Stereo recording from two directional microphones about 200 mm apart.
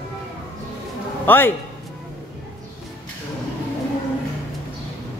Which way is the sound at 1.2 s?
10° left (ahead or behind).